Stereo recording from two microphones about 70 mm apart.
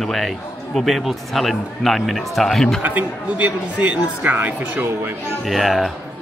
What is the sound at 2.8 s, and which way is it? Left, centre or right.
A man's voice, right.